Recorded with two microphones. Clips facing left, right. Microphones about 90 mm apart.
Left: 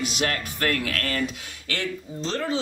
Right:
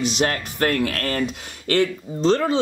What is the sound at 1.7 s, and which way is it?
Speech, 55° right (ahead or behind).